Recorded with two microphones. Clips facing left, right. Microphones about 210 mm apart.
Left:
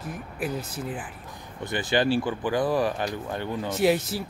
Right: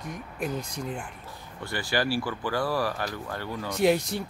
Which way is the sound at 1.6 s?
20° left (ahead or behind).